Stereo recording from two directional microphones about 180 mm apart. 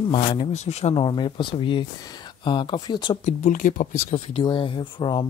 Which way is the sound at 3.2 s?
45° left (ahead or behind).